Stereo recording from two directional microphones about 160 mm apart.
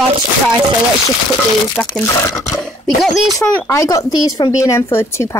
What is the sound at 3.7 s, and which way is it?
A woman's voice, 20° left (ahead or behind).